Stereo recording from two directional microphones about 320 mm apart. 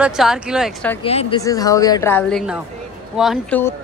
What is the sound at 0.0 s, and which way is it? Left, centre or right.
Speech, centre.